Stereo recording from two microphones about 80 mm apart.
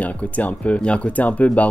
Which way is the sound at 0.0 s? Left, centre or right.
Centre.